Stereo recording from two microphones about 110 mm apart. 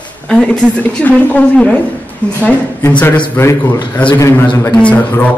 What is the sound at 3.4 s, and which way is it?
A man's voice, 20° left (ahead or behind).